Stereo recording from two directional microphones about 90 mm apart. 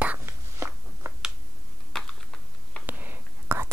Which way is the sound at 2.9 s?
20° right (ahead or behind).